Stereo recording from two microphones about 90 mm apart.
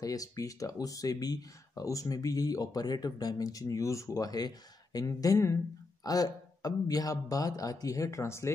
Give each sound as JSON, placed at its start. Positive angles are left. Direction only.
{"t": 0.0, "sound": "speech", "side_deg": 40}
{"t": 5.0, "sound": "speech", "side_deg": 35}